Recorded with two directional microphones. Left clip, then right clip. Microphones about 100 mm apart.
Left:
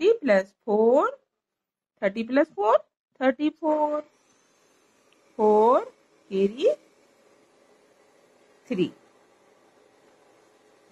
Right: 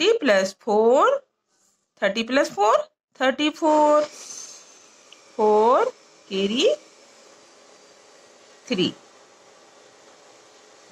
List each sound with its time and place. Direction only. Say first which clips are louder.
0.0 s speech: right 2 dB; 25° right (ahead or behind)
5.4 s speech: right 2 dB; 30° right (ahead or behind)
8.6 s speech: right 4 dB; 25° right (ahead or behind)